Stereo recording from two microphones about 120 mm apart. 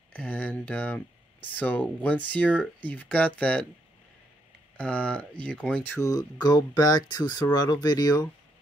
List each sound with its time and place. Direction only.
0.1 s speech: 15° left (ahead or behind)
4.7 s speech: 10° left (ahead or behind)
5.9 s speech: 25° left (ahead or behind)